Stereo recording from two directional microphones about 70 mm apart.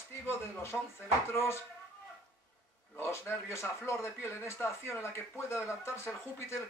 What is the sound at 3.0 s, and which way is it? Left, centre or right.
Speech, left.